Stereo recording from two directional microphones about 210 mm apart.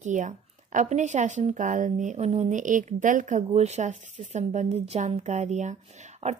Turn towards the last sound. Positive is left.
turn(degrees=-30)  # may be behind; listen again after turning